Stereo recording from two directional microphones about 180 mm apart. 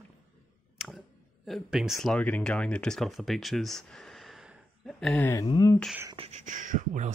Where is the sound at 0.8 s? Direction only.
Centre (ahead or behind).